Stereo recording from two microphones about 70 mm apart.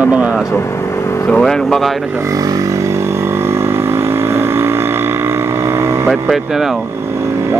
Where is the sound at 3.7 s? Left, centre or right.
Right.